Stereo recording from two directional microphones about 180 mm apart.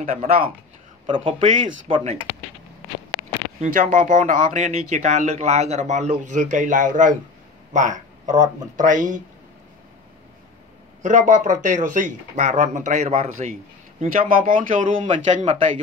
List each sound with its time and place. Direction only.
0.0 s speech: 35° right (ahead or behind)
1.4 s speech: 45° right (ahead or behind)
1.9 s speech: 30° right (ahead or behind)
3.6 s speech: 45° right (ahead or behind)
11.0 s speech: 45° right (ahead or behind)
14.0 s speech: 50° right (ahead or behind)